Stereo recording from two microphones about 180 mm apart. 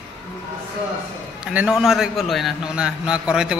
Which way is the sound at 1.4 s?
5° right (ahead or behind).